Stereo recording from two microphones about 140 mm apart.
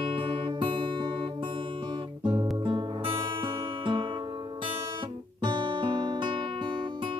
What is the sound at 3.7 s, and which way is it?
Guitar, 35° right (ahead or behind).